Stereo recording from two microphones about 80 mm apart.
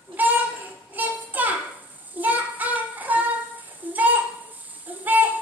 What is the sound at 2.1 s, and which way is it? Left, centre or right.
Child singing, right.